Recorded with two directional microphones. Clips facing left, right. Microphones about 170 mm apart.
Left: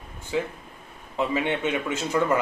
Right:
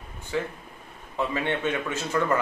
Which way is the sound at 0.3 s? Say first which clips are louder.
Left 2 dB; 15° left (ahead or behind).